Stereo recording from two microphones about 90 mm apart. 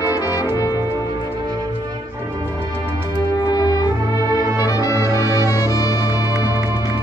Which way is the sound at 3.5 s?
45° left (ahead or behind).